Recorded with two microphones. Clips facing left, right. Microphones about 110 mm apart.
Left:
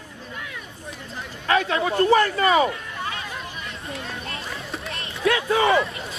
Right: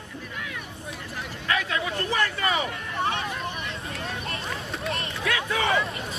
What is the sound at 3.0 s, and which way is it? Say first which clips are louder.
Hubbub: right 5 dB; 25° right (ahead or behind).